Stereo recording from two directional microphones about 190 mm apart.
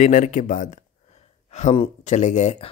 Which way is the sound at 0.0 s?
40° left (ahead or behind).